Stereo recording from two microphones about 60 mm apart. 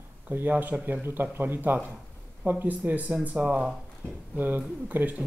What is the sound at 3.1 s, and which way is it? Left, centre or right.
Speech, centre.